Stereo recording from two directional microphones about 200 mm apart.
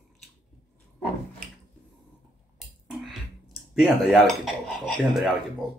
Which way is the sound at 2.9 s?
Centre (ahead or behind).